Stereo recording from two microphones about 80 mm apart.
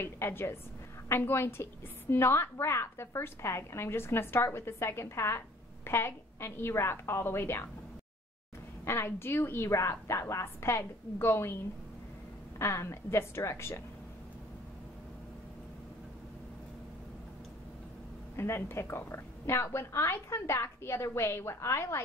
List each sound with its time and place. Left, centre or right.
0.0 s a woman's voice: left
8.8 s a woman's voice: left
12.5 s a woman's voice: left
18.3 s a woman's voice: left